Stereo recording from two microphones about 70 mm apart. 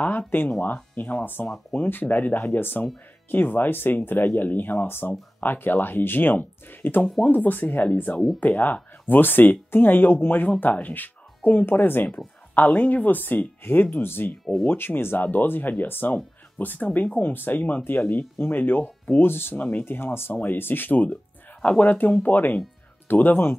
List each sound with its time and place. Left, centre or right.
0.3 s speech: left
14.4 s speech: centre
14.7 s speech: left